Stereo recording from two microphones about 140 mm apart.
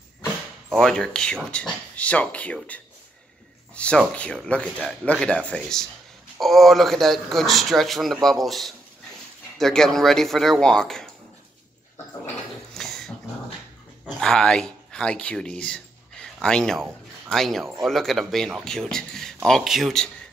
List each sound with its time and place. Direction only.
0.7 s a man's voice: 5° left (ahead or behind)
12.7 s dog: 5° left (ahead or behind)
14.0 s a man's voice: 5° left (ahead or behind)